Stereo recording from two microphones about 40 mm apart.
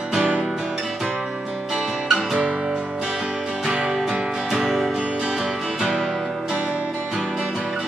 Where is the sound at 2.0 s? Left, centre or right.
Centre.